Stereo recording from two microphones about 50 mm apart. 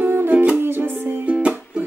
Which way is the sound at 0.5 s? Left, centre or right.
Right.